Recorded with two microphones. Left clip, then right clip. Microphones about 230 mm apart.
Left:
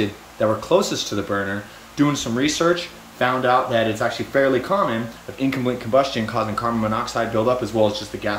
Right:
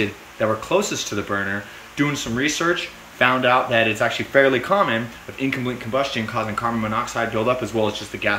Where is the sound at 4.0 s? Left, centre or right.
Right.